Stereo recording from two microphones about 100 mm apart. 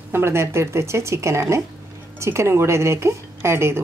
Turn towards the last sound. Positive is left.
turn(degrees=-25)  # may be behind; listen again after turning